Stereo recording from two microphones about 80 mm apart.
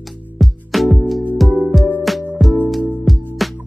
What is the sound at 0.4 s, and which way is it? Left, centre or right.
Music, centre.